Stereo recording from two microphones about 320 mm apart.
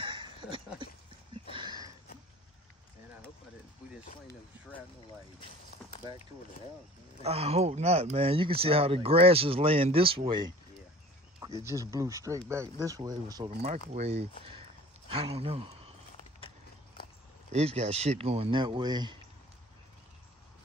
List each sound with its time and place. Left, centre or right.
0.0 s a sound: centre
6.0 s speech: centre
7.2 s speech: centre
11.6 s a man's voice: centre
16.2 s a sound: left
17.5 s speech: centre